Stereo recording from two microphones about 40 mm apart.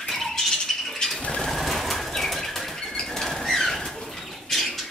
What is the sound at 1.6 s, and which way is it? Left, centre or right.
Bird flight, centre.